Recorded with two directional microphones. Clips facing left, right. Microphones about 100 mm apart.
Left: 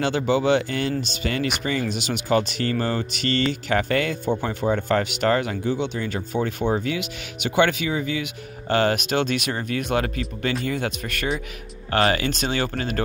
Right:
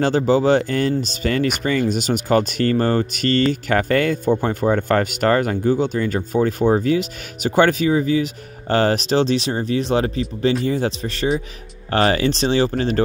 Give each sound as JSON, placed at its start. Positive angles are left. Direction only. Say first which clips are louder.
{"t": 0.0, "sound": "speech", "louder": "right 5 dB", "side_deg": -40}